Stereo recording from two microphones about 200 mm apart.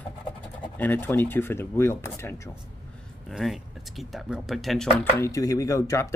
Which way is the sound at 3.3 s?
Centre (ahead or behind).